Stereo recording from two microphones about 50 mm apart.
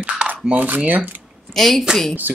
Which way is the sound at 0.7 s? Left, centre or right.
Right.